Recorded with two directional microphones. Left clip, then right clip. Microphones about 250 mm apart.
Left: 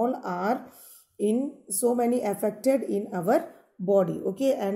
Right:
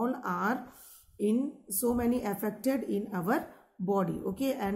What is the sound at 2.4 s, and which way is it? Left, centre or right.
Speech, centre.